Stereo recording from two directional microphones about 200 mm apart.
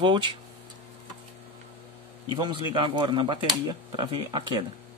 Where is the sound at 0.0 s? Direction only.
25° right (ahead or behind).